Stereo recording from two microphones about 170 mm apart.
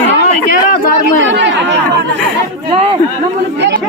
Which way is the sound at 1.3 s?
90° right.